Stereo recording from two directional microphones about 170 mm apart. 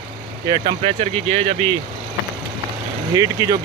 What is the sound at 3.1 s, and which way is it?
Speech, 20° right (ahead or behind).